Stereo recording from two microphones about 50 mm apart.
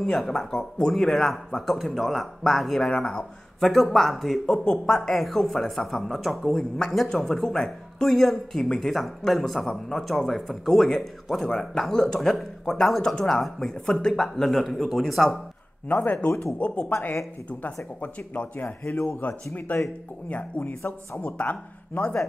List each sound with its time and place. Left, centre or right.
0.0 s speech: centre
11.4 s speech: centre
15.9 s speech: left
18.0 s speech: left